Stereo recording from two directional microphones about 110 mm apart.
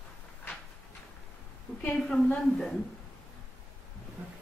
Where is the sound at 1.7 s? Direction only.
10° left (ahead or behind).